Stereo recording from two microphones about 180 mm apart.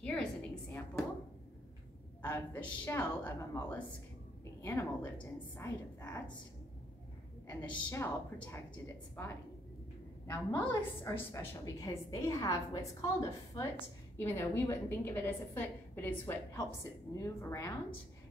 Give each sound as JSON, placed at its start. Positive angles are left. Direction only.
{"t": 0.0, "sound": "a sound", "side_deg": 5}
{"t": 2.2, "sound": "a woman's voice", "side_deg": 10}
{"t": 7.4, "sound": "a woman's voice", "side_deg": 15}
{"t": 10.2, "sound": "a woman's voice", "side_deg": 15}